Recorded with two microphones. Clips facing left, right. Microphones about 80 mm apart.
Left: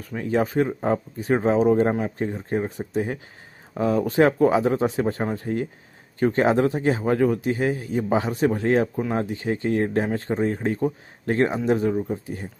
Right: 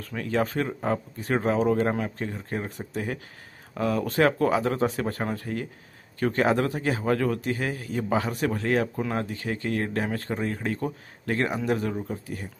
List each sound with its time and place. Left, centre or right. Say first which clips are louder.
0.0 s a man's voice: left 3 dB; centre